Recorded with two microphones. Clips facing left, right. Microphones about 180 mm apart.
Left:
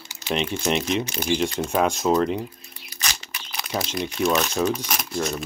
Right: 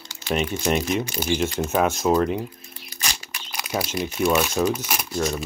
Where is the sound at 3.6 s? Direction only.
10° right (ahead or behind).